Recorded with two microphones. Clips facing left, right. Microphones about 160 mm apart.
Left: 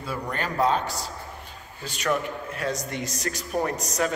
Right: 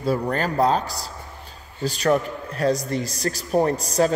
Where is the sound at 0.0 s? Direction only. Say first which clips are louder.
Right 8 dB; 35° right (ahead or behind).